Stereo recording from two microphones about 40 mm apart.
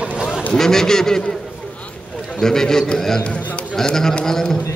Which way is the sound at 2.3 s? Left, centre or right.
Centre.